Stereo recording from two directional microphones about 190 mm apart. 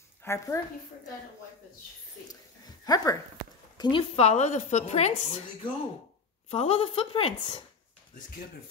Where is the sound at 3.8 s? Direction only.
25° left (ahead or behind).